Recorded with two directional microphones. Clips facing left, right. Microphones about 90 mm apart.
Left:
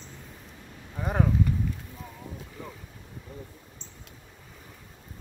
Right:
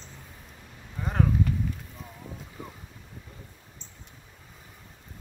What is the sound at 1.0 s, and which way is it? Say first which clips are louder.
Speech: left 1 dB; 15° left (ahead or behind).